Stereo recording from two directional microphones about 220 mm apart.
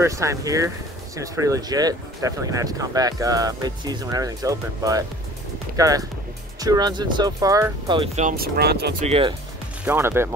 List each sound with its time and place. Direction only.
0.0 s speech: 15° right (ahead or behind)
8.2 s speech: 40° right (ahead or behind)
9.0 s speech: 25° right (ahead or behind)
9.8 s speech: 10° right (ahead or behind)